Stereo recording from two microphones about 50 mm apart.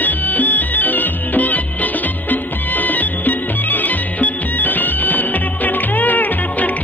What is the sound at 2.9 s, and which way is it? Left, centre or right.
Music, left.